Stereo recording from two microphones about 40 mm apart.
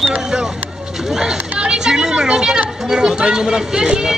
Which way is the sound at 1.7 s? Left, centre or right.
Centre.